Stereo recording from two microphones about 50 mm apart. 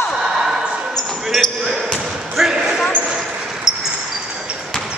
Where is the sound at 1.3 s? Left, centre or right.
Centre.